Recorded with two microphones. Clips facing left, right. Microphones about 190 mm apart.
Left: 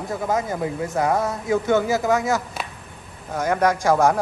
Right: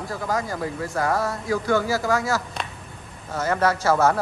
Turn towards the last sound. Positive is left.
turn(degrees=15)  # may be behind; listen again after turning